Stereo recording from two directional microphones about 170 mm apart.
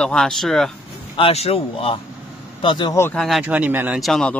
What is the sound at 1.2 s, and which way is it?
Speech, 35° left (ahead or behind).